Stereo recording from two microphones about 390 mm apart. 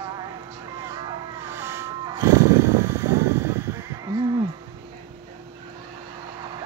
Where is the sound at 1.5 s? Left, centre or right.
Centre.